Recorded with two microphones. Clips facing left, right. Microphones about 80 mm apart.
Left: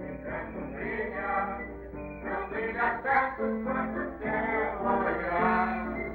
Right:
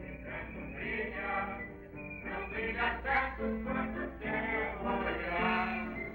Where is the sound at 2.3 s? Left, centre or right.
Left.